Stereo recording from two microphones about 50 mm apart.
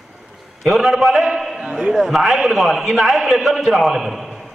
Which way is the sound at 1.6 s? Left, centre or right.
Right.